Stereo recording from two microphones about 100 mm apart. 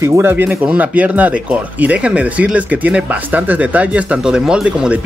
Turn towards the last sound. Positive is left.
turn(degrees=-10)  # may be behind; listen again after turning